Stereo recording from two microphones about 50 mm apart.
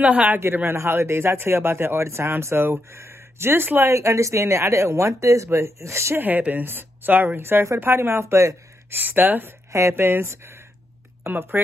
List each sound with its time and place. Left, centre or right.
0.0 s speech: right
0.7 s speech: right
3.8 s speech: right
6.1 s speech: right
7.8 s speech: right
8.9 s speech: right
9.7 s speech: right
9.9 s speech: right
11.2 s speech: right